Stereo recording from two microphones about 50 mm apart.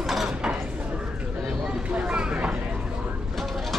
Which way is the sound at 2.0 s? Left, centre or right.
Right.